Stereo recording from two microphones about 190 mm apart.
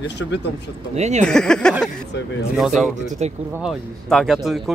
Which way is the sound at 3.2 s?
35° right (ahead or behind).